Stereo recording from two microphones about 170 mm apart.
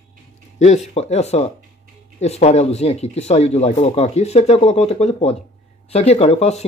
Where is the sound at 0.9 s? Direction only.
40° left (ahead or behind).